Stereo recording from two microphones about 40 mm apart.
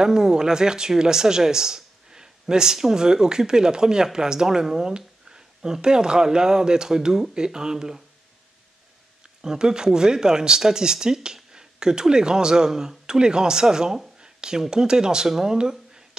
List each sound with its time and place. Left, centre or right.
0.0 s speech: centre
9.4 s speech: centre
15.5 s a sound: centre